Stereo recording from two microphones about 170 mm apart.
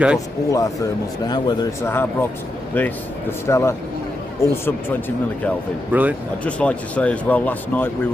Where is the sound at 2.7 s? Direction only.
10° left (ahead or behind).